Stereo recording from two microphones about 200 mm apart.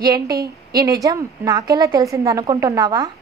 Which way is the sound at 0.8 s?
20° right (ahead or behind).